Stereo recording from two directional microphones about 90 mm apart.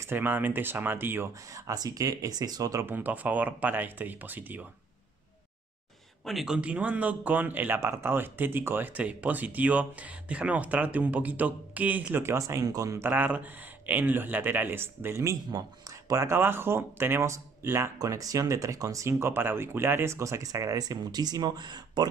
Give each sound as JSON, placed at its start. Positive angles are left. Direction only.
{"t": 0.0, "sound": "speech", "side_deg": -25}
{"t": 1.5, "sound": "speech", "side_deg": -40}
{"t": 2.9, "sound": "speech", "side_deg": -20}
{"t": 6.2, "sound": "speech", "side_deg": -5}
{"t": 13.0, "sound": "speech", "side_deg": -20}
{"t": 17.9, "sound": "speech", "side_deg": -40}